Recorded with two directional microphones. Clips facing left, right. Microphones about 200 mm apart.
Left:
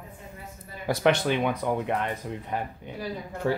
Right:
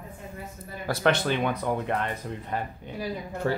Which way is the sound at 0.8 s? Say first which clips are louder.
Left 1 dB; 15° left (ahead or behind).